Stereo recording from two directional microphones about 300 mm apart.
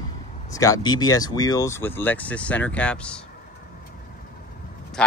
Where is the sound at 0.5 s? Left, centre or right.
Centre.